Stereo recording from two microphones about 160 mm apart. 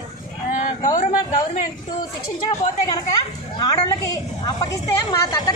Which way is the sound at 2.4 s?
25° left (ahead or behind).